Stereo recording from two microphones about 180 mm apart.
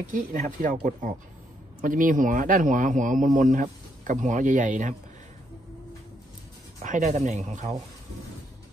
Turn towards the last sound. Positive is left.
turn(degrees=-40)  # may be behind; listen again after turning